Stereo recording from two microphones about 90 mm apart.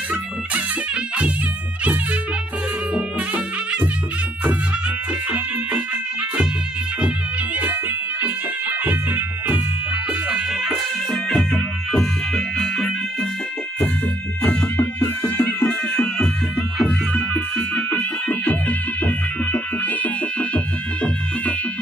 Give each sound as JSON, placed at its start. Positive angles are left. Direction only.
{"t": 2.9, "sound": "music", "side_deg": -15}
{"t": 8.2, "sound": "music", "side_deg": -20}
{"t": 11.2, "sound": "music", "side_deg": 5}
{"t": 14.4, "sound": "music", "side_deg": 15}